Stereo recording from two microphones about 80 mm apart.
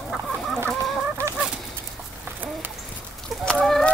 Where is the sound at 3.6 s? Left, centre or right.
Centre.